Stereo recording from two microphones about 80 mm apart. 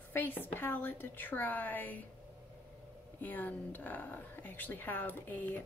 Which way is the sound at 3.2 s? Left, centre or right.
Left.